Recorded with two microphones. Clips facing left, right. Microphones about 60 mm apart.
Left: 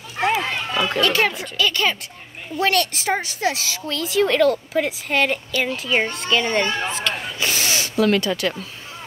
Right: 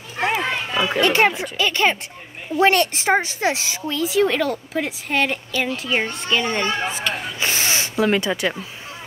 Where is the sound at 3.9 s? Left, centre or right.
Centre.